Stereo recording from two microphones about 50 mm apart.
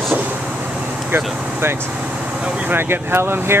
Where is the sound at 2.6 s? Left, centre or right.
Right.